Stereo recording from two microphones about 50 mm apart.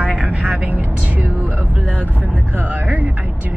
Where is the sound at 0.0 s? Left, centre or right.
Right.